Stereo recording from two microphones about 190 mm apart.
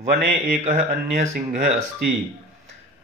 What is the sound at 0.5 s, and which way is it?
Speech, 35° right (ahead or behind).